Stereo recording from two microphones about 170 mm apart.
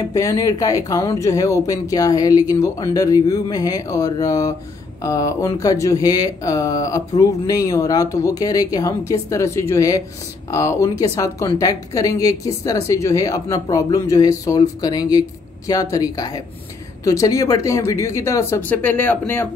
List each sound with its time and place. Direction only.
0.1 s speech: 20° left (ahead or behind)